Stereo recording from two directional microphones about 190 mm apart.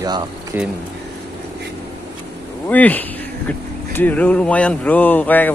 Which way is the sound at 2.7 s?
10° left (ahead or behind).